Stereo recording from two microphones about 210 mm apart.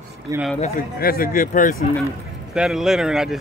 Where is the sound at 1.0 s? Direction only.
45° left (ahead or behind).